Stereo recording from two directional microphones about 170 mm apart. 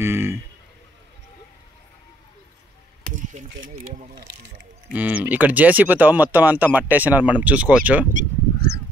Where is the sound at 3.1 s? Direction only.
45° right (ahead or behind).